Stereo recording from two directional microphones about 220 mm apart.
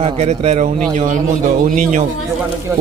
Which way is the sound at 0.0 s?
30° right (ahead or behind).